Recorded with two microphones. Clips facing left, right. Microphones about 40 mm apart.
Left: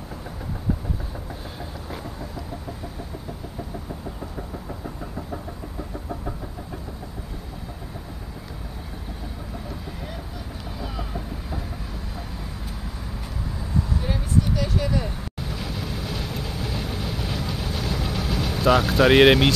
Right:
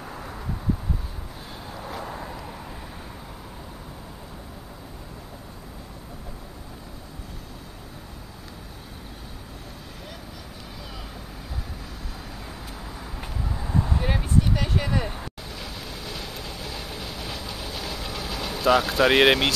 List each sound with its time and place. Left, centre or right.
10.8 s vehicle: centre
13.6 s vehicle: right
14.8 s vehicle: right
15.4 s vehicle: centre